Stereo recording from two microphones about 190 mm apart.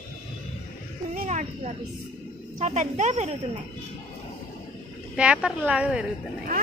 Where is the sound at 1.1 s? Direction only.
40° right (ahead or behind).